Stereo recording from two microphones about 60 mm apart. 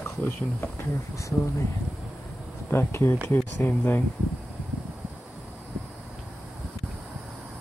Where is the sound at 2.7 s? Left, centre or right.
Left.